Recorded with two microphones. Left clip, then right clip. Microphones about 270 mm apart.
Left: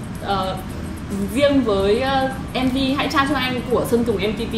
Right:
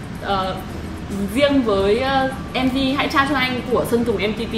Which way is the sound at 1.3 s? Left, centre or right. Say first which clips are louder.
Even; centre.